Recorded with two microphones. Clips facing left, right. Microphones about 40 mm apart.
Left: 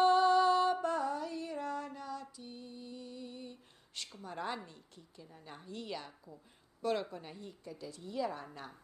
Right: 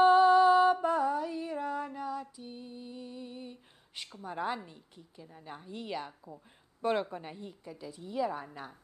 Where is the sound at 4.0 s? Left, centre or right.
Centre.